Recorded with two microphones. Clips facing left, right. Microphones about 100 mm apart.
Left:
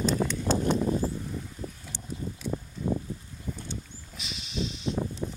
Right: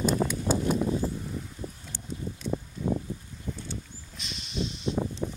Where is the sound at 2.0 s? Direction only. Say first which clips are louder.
Even; 10° left (ahead or behind).